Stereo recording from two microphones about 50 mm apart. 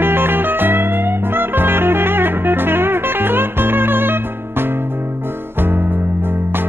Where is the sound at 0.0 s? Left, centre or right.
Right.